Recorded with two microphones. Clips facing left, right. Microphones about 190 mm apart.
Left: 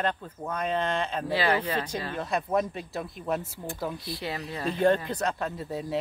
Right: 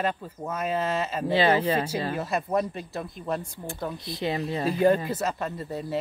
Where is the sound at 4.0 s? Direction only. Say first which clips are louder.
Right 5 dB; 20° right (ahead or behind).